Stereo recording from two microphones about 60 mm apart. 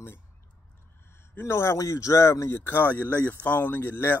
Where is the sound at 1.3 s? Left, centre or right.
Left.